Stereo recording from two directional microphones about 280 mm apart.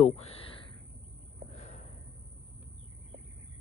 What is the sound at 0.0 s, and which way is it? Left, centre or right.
Speech, left.